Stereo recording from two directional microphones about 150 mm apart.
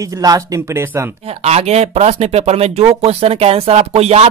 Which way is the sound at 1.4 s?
45° right (ahead or behind).